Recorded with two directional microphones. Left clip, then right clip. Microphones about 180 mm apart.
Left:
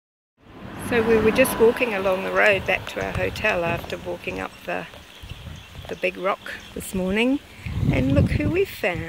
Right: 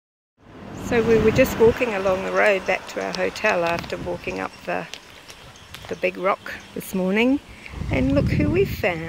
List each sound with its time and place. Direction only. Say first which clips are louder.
0.8 s speech: right 1 dB; 5° right (ahead or behind)
5.9 s speech: right 2 dB; 5° right (ahead or behind)